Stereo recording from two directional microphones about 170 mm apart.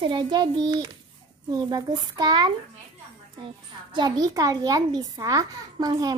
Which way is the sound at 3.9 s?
25° right (ahead or behind).